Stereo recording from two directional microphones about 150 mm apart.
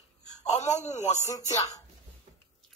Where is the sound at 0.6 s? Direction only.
50° left (ahead or behind).